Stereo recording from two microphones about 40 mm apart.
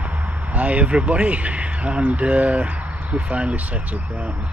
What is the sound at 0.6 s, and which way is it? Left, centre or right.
Speech, right.